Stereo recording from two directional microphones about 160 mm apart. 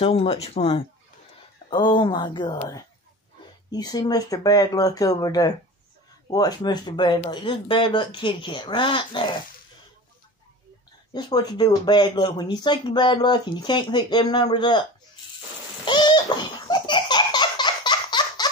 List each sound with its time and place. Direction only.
0.0 s speech: 40° left (ahead or behind)
3.7 s speech: 25° left (ahead or behind)
11.1 s speech: 25° left (ahead or behind)
15.8 s a sound: 30° left (ahead or behind)
16.6 s laughter: 30° left (ahead or behind)